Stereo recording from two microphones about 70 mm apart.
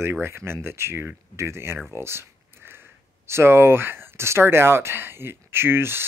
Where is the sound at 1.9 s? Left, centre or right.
Right.